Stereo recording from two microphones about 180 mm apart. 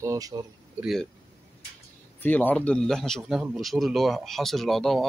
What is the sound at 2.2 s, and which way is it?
A man's voice, 10° left (ahead or behind).